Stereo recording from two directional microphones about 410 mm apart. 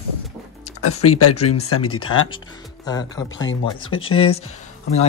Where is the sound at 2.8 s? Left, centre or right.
Centre.